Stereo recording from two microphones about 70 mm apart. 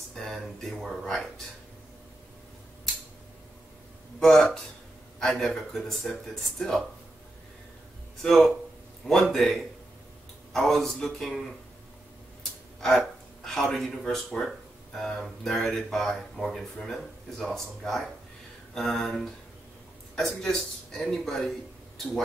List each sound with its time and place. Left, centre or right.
0.1 s speech: centre
4.2 s speech: centre
8.2 s speech: centre
12.8 s speech: centre